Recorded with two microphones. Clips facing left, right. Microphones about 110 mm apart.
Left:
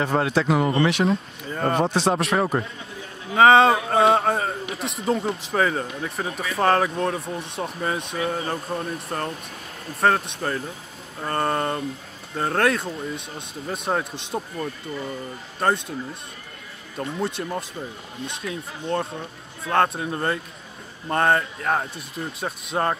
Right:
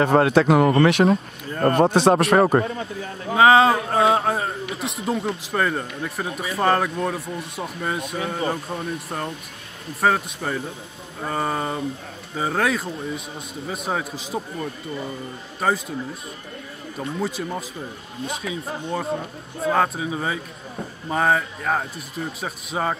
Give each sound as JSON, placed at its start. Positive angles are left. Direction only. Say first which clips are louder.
{"t": 0.0, "sound": "speech", "louder": "right 5 dB", "side_deg": -55}
{"t": 1.5, "sound": "a man's voice", "louder": "right 3 dB", "side_deg": 0}
{"t": 1.8, "sound": "speech", "louder": "right 7 dB", "side_deg": -55}
{"t": 3.3, "sound": "a man's voice", "louder": "even", "side_deg": 0}
{"t": 17.0, "sound": "a man's voice", "louder": "even", "side_deg": 0}